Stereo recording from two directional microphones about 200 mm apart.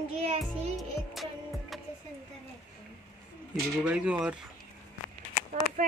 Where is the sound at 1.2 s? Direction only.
Centre (ahead or behind).